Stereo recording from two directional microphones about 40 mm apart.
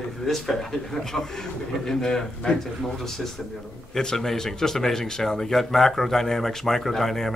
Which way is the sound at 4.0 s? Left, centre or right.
Centre.